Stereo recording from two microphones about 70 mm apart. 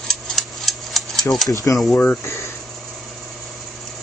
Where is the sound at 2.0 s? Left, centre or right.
Left.